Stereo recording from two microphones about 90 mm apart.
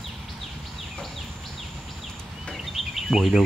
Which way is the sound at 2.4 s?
Centre (ahead or behind).